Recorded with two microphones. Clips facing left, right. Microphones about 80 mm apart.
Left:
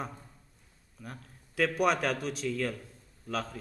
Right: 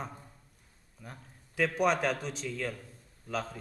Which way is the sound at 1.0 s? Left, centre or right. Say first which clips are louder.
Left 3 dB; centre.